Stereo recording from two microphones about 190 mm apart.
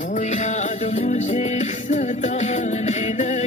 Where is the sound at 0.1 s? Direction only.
40° left (ahead or behind).